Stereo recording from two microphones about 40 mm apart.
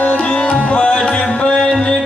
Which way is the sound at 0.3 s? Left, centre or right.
Left.